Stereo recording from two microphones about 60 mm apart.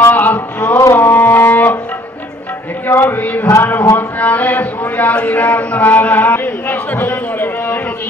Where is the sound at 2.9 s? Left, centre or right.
Left.